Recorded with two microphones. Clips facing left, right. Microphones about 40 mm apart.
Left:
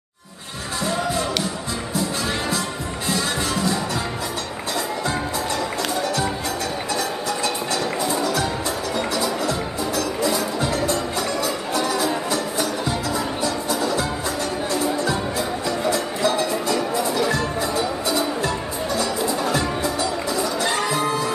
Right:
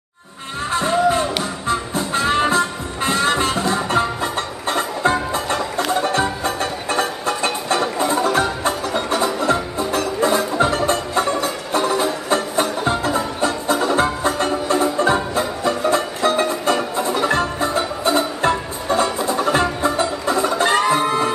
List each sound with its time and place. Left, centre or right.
0.7 s music: right